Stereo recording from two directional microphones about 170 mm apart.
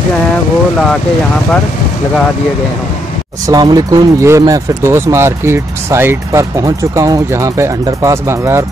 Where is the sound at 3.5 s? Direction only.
25° right (ahead or behind).